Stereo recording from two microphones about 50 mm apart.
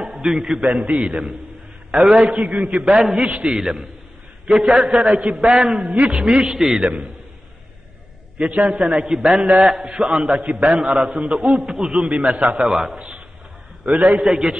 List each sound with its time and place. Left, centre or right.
0.0 s a man's voice: centre
0.7 s a man's voice: centre
2.2 s a man's voice: right
2.6 s a man's voice: centre
8.5 s a man's voice: centre
11.1 s a man's voice: centre
11.3 s a man's voice: centre
13.8 s a man's voice: right
14.1 s a man's voice: centre